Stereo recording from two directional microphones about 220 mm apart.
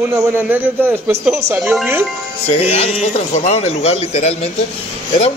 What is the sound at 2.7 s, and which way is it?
Speech, 30° left (ahead or behind).